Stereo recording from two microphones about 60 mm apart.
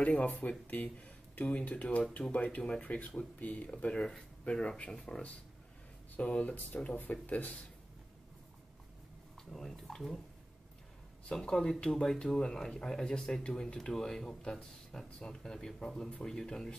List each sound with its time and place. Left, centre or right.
0.0 s speech: left
9.5 s speech: centre
11.2 s speech: centre